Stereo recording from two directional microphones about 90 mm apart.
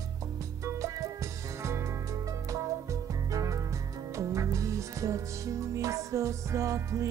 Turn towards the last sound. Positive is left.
turn(degrees=-35)  # may be behind; listen again after turning